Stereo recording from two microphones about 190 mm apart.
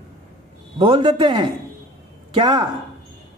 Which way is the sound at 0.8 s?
25° right (ahead or behind).